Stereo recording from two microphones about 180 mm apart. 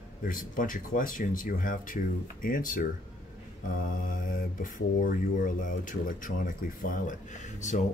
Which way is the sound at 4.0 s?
50° left (ahead or behind).